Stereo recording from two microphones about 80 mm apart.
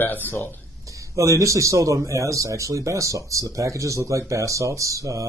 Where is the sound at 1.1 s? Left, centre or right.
Right.